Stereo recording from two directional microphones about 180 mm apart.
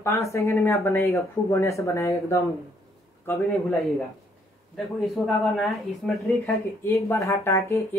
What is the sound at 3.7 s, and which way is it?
Speech, centre (ahead or behind).